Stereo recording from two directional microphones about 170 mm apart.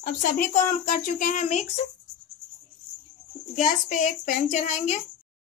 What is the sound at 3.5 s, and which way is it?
Speech, 45° left (ahead or behind).